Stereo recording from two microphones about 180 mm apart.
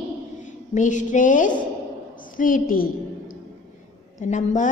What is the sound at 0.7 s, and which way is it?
A woman's voice, 45° left (ahead or behind).